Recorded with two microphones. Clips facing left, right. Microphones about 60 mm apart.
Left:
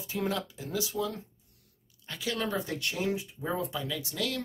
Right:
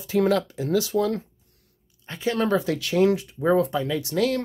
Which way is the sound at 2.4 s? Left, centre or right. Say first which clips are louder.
Right 9 dB; right.